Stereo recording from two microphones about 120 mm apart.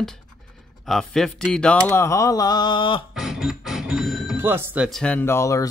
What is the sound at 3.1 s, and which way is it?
Speech, 5° right (ahead or behind).